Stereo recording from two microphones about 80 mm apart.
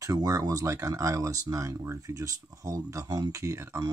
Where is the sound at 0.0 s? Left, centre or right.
Right.